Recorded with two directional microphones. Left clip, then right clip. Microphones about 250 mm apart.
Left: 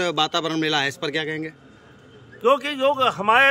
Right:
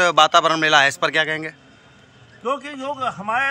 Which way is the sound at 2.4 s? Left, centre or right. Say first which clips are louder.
Left 6 dB; centre.